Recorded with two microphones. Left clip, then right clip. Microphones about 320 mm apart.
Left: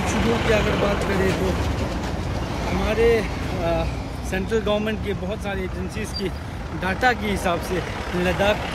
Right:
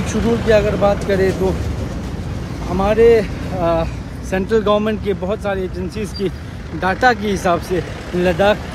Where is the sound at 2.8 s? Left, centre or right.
Centre.